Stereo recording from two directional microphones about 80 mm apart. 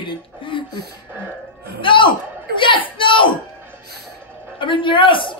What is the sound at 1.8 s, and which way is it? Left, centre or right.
Speech, left.